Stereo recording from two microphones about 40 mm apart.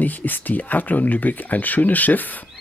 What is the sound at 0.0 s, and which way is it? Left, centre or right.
Speech, left.